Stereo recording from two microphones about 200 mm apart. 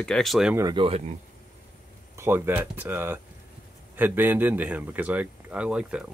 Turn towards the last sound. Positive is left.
turn(degrees=-5)  # may be behind; listen again after turning